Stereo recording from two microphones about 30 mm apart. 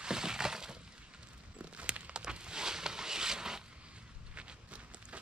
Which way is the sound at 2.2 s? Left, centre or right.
Right.